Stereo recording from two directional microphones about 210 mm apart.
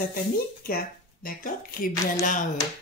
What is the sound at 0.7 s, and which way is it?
Speech, 45° left (ahead or behind).